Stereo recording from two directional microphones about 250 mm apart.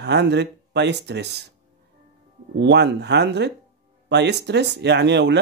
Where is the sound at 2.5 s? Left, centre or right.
Right.